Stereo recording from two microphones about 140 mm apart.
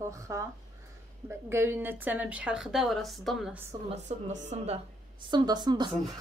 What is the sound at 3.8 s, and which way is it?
Speech, 55° right (ahead or behind).